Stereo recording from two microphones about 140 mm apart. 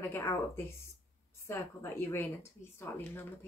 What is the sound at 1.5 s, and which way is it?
Speech, 20° left (ahead or behind).